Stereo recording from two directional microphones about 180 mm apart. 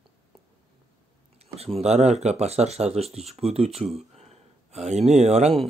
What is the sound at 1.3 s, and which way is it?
Speech, 35° right (ahead or behind).